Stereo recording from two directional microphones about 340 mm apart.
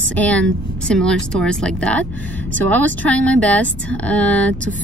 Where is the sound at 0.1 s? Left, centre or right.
Centre.